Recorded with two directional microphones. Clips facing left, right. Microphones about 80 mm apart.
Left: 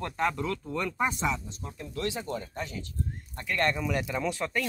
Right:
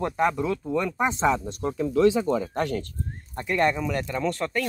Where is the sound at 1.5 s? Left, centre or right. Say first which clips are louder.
Right 13 dB; right.